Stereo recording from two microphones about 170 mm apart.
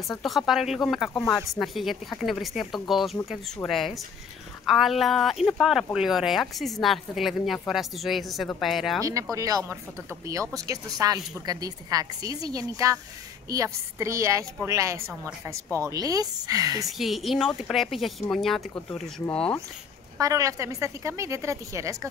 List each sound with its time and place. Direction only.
0.2 s a woman's voice: centre (ahead or behind)
9.0 s a woman's voice: 20° right (ahead or behind)
17.0 s a woman's voice: centre (ahead or behind)
20.2 s a woman's voice: 20° right (ahead or behind)